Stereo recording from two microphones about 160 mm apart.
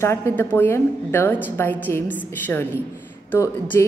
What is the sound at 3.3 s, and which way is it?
Speech, 15° left (ahead or behind).